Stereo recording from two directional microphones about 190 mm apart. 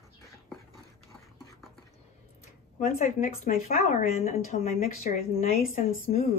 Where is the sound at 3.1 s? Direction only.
40° left (ahead or behind).